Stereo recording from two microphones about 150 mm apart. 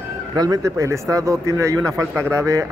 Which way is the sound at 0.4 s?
20° right (ahead or behind).